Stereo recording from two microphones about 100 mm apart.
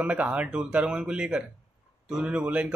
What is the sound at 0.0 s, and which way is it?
Speech, 15° right (ahead or behind).